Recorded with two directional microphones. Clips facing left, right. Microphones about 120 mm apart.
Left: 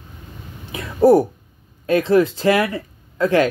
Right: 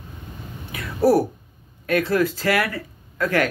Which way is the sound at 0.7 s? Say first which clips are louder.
Left 5 dB; 25° left (ahead or behind).